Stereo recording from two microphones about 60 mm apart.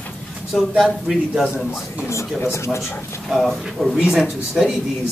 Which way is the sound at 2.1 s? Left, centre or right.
Left.